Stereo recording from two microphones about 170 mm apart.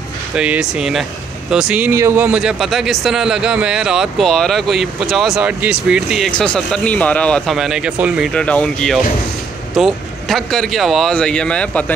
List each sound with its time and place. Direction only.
0.4 s speech: 5° right (ahead or behind)
8.3 s speech: 5° left (ahead or behind)